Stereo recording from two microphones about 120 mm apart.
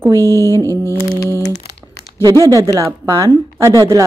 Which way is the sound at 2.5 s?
30° right (ahead or behind).